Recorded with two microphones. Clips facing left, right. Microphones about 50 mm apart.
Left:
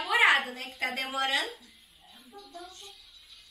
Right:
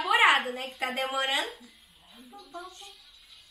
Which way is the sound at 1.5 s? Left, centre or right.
Centre.